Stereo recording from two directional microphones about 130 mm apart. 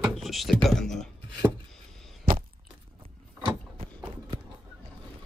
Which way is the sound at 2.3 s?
90° right.